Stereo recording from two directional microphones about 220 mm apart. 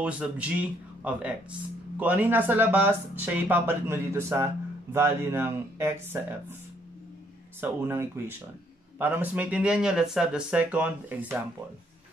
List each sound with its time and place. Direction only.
0.0 s speech: 5° right (ahead or behind)
7.6 s speech: 10° right (ahead or behind)